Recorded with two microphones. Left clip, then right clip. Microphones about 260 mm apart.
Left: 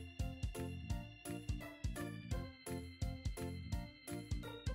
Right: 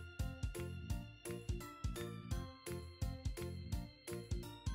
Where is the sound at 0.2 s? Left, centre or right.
Centre.